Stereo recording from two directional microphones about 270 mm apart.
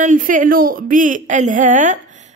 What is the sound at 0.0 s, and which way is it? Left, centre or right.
A woman's voice, right.